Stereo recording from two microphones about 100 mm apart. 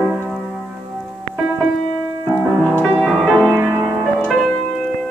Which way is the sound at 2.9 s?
Centre (ahead or behind).